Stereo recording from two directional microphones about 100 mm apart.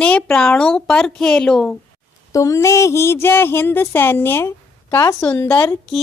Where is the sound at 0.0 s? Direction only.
10° left (ahead or behind).